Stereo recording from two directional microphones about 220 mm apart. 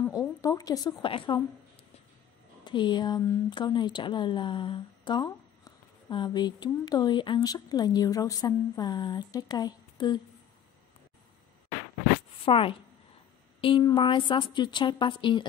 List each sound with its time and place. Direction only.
0.0 s speech: 15° left (ahead or behind)
2.6 s speech: 20° left (ahead or behind)
12.4 s speech: 25° left (ahead or behind)